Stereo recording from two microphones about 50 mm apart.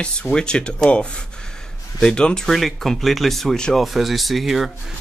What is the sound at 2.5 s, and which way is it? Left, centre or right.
Speech, centre.